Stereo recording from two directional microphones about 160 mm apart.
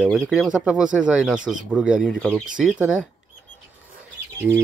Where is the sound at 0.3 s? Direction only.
5° right (ahead or behind).